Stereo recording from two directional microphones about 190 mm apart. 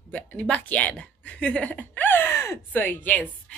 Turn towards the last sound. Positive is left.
turn(degrees=10)  # may be behind; listen again after turning